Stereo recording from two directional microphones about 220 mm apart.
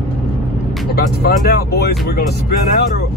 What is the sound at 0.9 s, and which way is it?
Speech, 45° left (ahead or behind).